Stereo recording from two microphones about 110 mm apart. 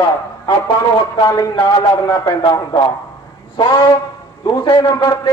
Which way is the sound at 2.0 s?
30° left (ahead or behind).